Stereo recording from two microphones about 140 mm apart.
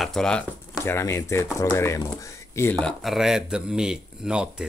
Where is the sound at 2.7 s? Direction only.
5° left (ahead or behind).